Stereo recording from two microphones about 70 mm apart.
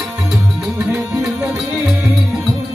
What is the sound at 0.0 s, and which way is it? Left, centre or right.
Music, centre.